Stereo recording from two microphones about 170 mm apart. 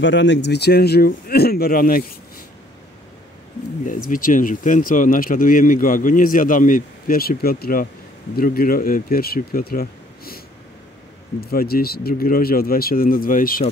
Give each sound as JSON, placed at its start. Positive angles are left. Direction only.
{"t": 0.0, "sound": "speech", "side_deg": 90}
{"t": 3.8, "sound": "speech", "side_deg": 50}
{"t": 11.4, "sound": "speech", "side_deg": 65}